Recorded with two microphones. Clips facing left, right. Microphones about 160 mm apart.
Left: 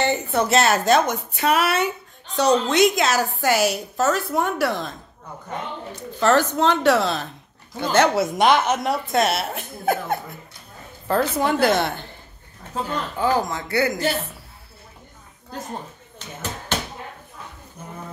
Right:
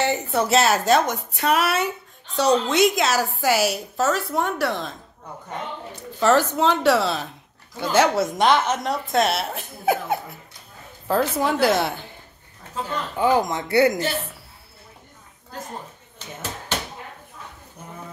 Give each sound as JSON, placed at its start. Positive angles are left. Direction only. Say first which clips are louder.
{"t": 0.0, "sound": "a woman's voice", "louder": "left 1 dB", "side_deg": -5}
{"t": 6.1, "sound": "a woman's voice", "louder": "even", "side_deg": -5}
{"t": 8.1, "sound": "a woman's voice", "louder": "left 1 dB", "side_deg": 10}
{"t": 13.2, "sound": "speech", "louder": "right 2 dB", "side_deg": -20}